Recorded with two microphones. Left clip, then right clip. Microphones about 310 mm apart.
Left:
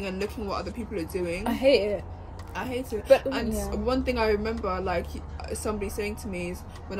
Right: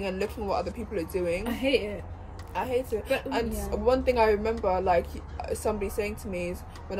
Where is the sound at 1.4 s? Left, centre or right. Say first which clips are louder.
Left 5 dB; centre.